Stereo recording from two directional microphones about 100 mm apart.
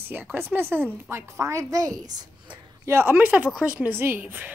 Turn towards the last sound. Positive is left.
turn(degrees=-20)  # may be behind; listen again after turning